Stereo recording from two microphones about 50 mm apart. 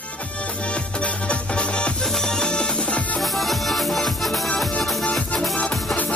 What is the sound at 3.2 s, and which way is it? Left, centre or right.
Music, centre.